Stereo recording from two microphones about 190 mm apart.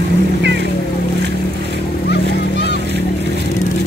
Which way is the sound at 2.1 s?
65° left (ahead or behind).